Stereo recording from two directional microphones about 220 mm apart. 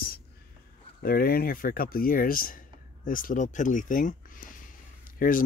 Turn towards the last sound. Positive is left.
turn(degrees=40)  # may be behind; listen again after turning